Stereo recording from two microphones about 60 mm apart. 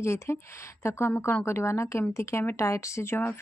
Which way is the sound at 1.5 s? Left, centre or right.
Left.